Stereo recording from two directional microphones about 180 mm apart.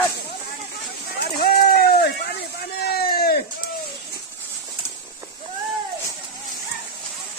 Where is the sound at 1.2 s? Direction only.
60° left (ahead or behind).